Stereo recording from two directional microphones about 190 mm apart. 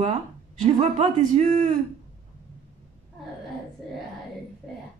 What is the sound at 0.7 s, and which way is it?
Speech, 40° right (ahead or behind).